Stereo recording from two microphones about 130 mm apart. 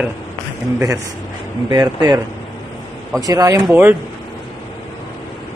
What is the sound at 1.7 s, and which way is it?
Speech, 30° right (ahead or behind).